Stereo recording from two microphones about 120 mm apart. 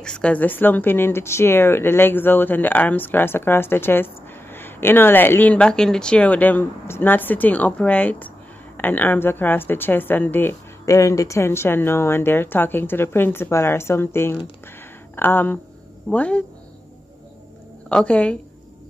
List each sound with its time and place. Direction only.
0.0 s speech: 10° left (ahead or behind)
17.8 s speech: 10° left (ahead or behind)